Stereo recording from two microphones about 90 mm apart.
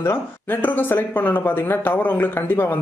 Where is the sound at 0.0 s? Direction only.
25° left (ahead or behind).